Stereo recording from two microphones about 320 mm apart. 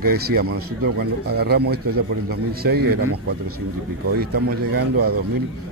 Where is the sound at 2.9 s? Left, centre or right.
Right.